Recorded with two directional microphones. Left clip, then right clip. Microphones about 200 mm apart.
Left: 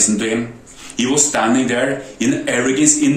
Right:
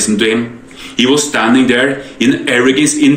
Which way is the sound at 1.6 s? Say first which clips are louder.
Right 6 dB; 10° left (ahead or behind).